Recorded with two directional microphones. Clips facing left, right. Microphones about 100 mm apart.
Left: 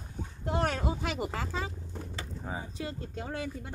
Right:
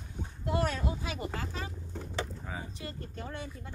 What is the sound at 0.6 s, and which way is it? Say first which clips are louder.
Speech: left 2 dB; 70° left (ahead or behind).